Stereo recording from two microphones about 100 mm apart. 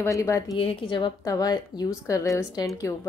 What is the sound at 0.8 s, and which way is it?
Speech, 55° left (ahead or behind).